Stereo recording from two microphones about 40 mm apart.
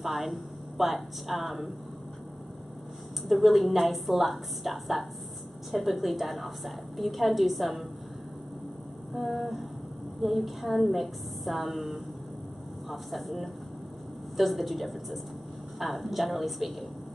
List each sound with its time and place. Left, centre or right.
0.0 s a woman's voice: centre
3.3 s a woman's voice: centre
9.1 s a woman's voice: centre